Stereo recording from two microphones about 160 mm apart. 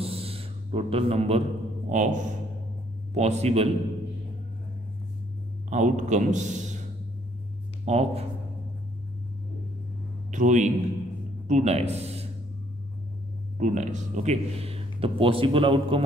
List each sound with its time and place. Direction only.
0.0 s a sound: 35° right (ahead or behind)
1.9 s a man's voice: 50° right (ahead or behind)
5.7 s a man's voice: 50° right (ahead or behind)
7.8 s speech: 40° right (ahead or behind)
10.3 s a man's voice: 50° right (ahead or behind)
13.6 s speech: 50° right (ahead or behind); by 16.0 s 35° right (ahead or behind)